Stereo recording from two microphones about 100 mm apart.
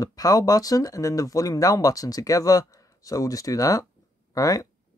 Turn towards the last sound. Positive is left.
turn(degrees=35)  # may be behind; listen again after turning